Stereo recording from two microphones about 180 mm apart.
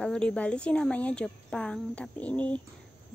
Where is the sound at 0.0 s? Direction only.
5° left (ahead or behind).